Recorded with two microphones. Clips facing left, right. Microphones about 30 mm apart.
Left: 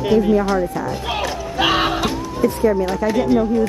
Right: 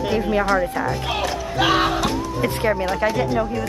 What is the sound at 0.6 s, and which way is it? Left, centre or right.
Speech, right.